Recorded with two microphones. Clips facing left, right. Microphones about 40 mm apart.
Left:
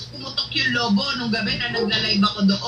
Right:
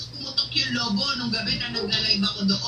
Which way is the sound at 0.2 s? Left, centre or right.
Left.